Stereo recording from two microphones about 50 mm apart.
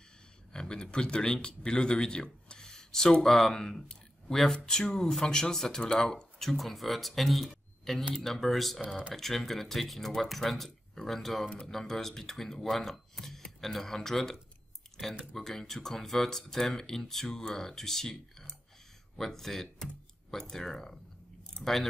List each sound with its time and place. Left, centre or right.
0.5 s speech: centre
8.8 s speech: centre
9.1 s speech: centre
15.3 s speech: centre